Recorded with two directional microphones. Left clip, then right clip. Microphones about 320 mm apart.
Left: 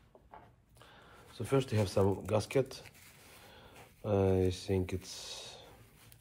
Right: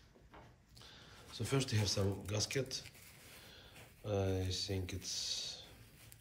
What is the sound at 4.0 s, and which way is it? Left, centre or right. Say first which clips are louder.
Speech: left 8 dB; centre.